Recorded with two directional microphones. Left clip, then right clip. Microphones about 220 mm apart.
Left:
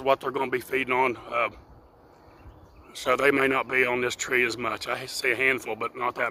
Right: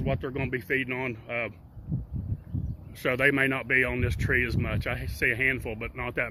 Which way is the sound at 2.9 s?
15° left (ahead or behind).